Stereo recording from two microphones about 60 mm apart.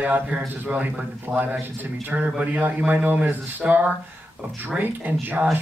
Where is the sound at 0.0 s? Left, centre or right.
Right.